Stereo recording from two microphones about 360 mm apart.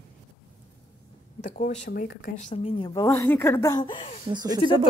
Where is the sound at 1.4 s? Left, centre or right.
Centre.